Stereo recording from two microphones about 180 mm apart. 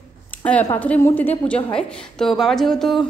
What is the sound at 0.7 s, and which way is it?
A woman's voice, 10° left (ahead or behind).